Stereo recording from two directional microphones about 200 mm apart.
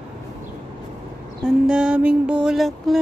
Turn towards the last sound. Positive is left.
turn(degrees=0)  # may be behind; listen again after turning